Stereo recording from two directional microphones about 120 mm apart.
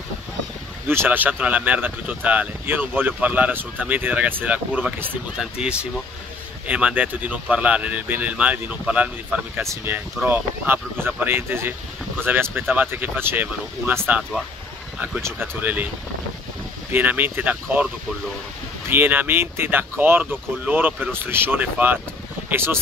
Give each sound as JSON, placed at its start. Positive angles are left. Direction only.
{"t": 0.8, "sound": "speech", "side_deg": -15}
{"t": 15.6, "sound": "speech", "side_deg": -15}
{"t": 16.9, "sound": "speech", "side_deg": -15}
{"t": 18.9, "sound": "speech", "side_deg": -15}